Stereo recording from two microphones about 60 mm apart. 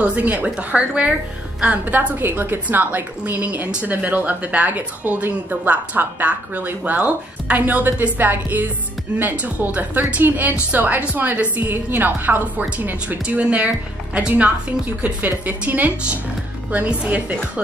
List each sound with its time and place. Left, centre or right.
0.0 s a woman's voice: right
15.0 s speech: right